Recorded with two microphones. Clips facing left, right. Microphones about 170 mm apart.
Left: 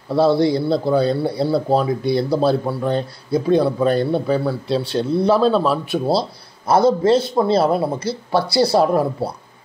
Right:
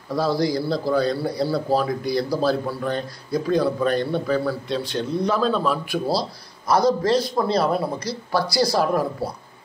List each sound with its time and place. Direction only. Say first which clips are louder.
0.1 s speech: left 6 dB; 25° left (ahead or behind)